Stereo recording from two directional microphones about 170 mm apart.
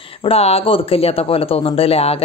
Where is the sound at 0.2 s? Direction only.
35° left (ahead or behind).